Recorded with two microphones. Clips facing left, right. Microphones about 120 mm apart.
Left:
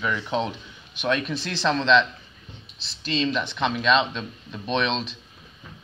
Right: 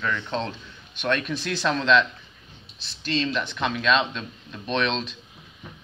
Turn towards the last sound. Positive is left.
turn(degrees=0)  # may be behind; listen again after turning